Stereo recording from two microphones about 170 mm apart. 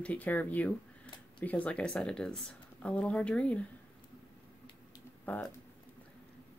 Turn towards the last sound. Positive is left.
turn(degrees=10)  # may be behind; listen again after turning